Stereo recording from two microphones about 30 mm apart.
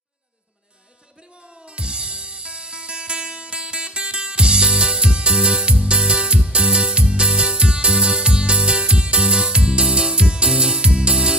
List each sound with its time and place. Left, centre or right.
1.5 s music: right